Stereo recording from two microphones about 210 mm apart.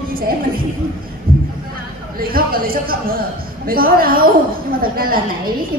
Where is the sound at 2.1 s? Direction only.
45° right (ahead or behind).